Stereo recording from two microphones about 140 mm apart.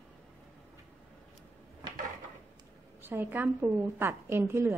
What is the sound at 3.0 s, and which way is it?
A woman's voice, 15° right (ahead or behind).